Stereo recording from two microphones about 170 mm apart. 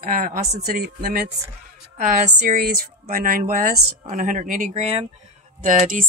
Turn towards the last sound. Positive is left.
turn(degrees=-50)  # may be behind; listen again after turning